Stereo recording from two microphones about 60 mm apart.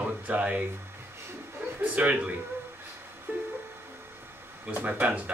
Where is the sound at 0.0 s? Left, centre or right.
Right.